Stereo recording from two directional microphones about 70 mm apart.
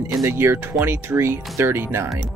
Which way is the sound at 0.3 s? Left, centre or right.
Right.